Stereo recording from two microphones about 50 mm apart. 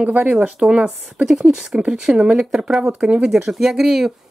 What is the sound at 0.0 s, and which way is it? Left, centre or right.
Speech, right.